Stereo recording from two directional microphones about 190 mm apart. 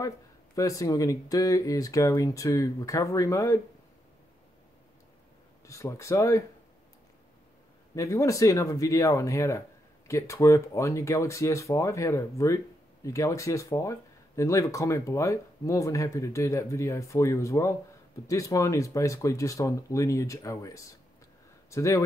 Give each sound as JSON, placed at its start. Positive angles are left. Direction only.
{"t": 0.6, "sound": "speech", "side_deg": 15}
{"t": 5.7, "sound": "speech", "side_deg": 15}
{"t": 7.9, "sound": "speech", "side_deg": 15}